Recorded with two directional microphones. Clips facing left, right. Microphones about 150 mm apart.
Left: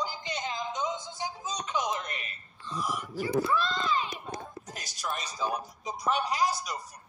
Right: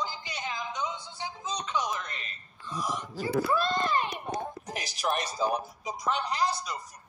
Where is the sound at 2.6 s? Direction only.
15° right (ahead or behind).